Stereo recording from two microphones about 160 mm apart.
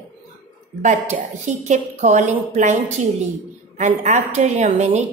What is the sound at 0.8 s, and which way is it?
A woman's voice, 50° right (ahead or behind).